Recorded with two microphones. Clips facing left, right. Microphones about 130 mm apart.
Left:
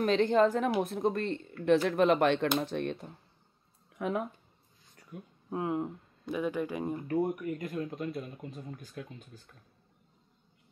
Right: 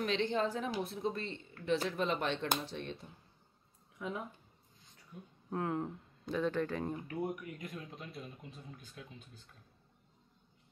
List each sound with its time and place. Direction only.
0.0 s speech: 45° left (ahead or behind); by 5.3 s 70° left (ahead or behind)
5.5 s speech: 15° left (ahead or behind)
7.1 s speech: 45° left (ahead or behind)